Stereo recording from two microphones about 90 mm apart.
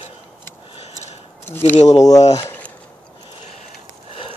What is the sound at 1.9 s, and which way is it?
Speech, 40° left (ahead or behind).